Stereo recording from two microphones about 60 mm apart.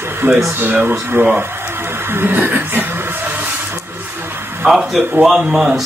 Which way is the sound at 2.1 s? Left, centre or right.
Right.